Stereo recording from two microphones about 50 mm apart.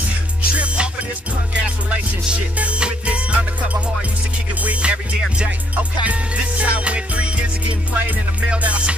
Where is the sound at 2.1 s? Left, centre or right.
Right.